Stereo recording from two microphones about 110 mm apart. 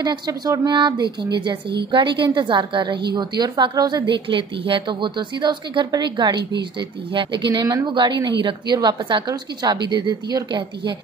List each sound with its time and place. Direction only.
0.0 s a woman's voice: 35° right (ahead or behind)